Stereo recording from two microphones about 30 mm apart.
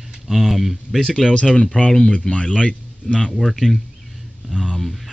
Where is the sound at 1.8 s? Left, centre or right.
Left.